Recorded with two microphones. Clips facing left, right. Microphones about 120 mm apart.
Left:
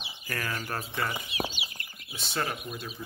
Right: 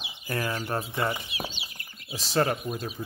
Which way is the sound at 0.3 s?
20° right (ahead or behind).